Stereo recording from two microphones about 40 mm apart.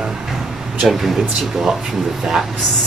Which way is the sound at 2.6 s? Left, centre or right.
Centre.